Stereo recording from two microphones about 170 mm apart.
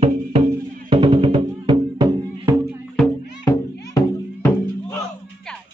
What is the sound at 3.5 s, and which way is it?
Music, 20° left (ahead or behind).